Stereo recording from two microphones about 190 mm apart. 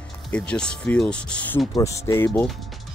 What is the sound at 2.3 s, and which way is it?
Speech, centre (ahead or behind).